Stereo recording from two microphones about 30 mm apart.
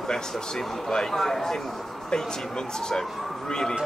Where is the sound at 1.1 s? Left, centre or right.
Centre.